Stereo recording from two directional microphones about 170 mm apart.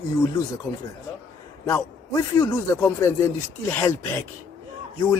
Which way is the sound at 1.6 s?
20° left (ahead or behind).